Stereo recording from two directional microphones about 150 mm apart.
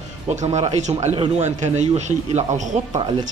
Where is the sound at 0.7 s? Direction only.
50° right (ahead or behind).